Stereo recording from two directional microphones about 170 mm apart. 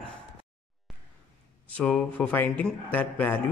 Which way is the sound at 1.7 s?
5° left (ahead or behind).